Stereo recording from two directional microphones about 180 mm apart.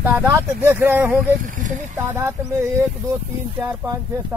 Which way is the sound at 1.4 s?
45° right (ahead or behind).